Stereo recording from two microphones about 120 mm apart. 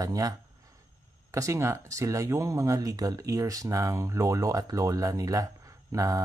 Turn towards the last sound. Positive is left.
turn(degrees=-30)  # may be behind; listen again after turning